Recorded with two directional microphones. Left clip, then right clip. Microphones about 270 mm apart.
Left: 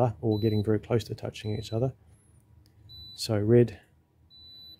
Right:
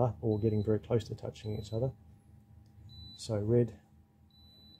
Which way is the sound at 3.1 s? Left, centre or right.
Left.